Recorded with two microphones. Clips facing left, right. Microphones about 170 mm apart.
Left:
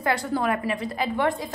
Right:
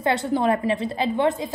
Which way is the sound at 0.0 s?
25° right (ahead or behind).